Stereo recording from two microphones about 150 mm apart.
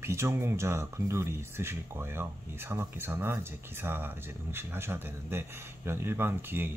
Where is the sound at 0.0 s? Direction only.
20° right (ahead or behind).